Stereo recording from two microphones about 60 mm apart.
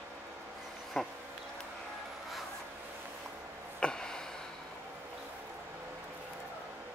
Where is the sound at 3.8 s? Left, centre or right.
Centre.